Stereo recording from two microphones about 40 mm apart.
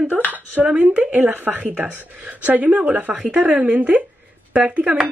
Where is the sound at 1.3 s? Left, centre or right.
Right.